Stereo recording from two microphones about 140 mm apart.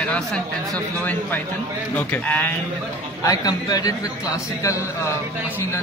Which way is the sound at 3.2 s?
25° left (ahead or behind).